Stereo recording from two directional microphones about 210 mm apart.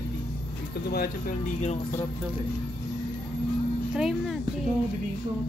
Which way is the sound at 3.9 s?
Centre (ahead or behind).